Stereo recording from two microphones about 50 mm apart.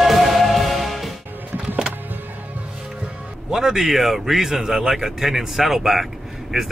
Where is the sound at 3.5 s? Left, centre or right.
Centre.